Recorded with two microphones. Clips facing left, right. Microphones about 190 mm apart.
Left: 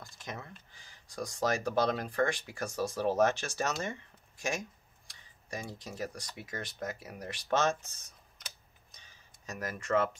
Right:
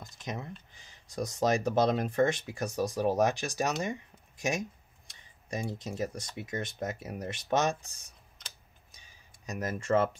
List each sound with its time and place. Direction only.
0.0 s speech: 20° right (ahead or behind)
8.9 s a sound: 10° right (ahead or behind)
9.6 s speech: 25° right (ahead or behind)